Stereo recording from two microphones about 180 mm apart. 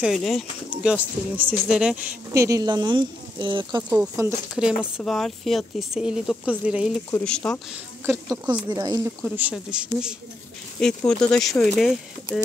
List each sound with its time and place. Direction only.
0.0 s speech: centre (ahead or behind)
0.9 s speech: 10° right (ahead or behind)
2.3 s speech: 15° right (ahead or behind)
3.9 s speech: 5° right (ahead or behind)
7.1 s speech: 10° left (ahead or behind)
8.0 s speech: 15° right (ahead or behind)
8.6 s speech: 25° right (ahead or behind)
9.2 s speech: 5° right (ahead or behind)